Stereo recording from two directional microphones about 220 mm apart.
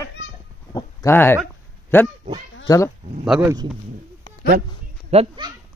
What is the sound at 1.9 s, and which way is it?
Speech, 10° left (ahead or behind).